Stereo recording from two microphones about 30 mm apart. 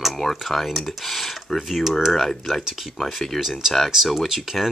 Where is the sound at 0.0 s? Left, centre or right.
Centre.